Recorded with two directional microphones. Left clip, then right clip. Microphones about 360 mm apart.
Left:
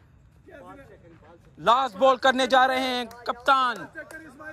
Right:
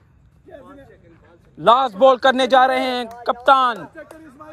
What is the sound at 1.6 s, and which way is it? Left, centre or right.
Speech, centre.